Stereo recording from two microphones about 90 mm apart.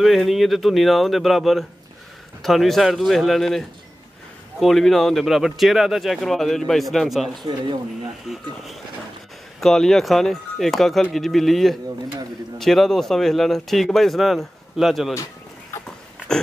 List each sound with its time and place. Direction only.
0.0 s speech: centre (ahead or behind)
9.6 s speech: 5° left (ahead or behind)
15.7 s dog: 35° left (ahead or behind)